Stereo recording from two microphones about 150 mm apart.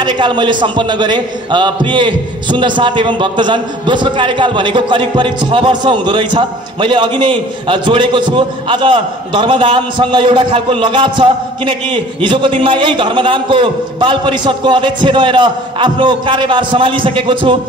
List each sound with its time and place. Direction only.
0.0 s a man's voice: 30° right (ahead or behind)